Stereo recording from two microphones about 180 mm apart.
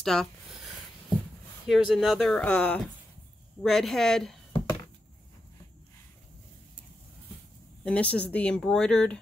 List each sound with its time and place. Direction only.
0.0 s speech: centre (ahead or behind)
1.7 s speech: centre (ahead or behind)
4.5 s a sound: 25° left (ahead or behind)
7.8 s speech: 5° left (ahead or behind)